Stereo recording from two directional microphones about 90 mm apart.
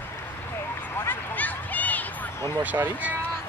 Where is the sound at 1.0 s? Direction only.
20° left (ahead or behind).